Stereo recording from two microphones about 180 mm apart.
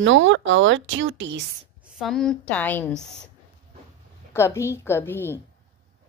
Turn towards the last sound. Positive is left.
turn(degrees=10)  # may be behind; listen again after turning